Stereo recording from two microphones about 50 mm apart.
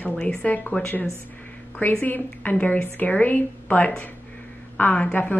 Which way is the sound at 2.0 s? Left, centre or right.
Left.